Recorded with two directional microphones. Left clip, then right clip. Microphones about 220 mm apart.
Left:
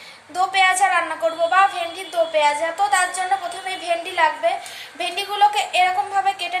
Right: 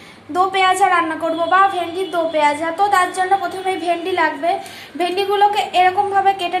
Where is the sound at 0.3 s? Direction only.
Centre (ahead or behind).